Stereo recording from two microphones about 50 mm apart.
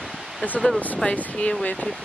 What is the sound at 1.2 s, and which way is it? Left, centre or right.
Speech, left.